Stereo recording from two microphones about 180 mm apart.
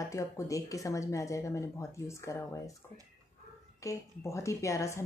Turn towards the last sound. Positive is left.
turn(degrees=15)  # may be behind; listen again after turning